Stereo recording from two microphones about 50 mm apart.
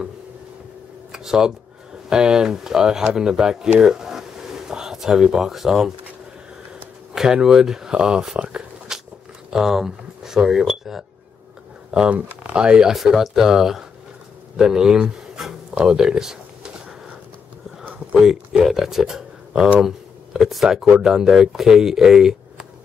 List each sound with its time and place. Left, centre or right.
1.1 s a sound: centre
2.0 s speech: centre
3.8 s a sound: centre
7.2 s speech: centre
8.4 s a sound: right
9.5 s speech: centre
11.9 s speech: centre
12.9 s speech: centre
18.1 s speech: centre